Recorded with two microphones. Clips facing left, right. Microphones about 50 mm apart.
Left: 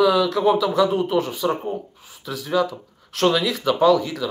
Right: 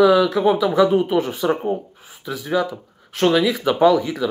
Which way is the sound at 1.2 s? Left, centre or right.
Right.